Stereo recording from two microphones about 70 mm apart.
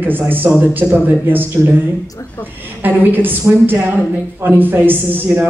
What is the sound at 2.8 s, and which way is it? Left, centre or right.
Speech, right.